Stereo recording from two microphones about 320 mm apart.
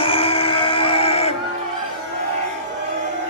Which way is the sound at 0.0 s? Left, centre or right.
Centre.